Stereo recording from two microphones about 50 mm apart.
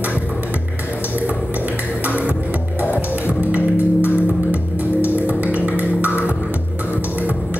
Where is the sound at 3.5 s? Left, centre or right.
Right.